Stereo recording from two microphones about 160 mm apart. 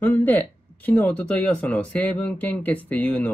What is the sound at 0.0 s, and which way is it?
Speech, 10° left (ahead or behind).